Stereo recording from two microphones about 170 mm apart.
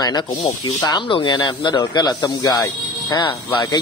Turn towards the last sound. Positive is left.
turn(degrees=25)  # may be behind; listen again after turning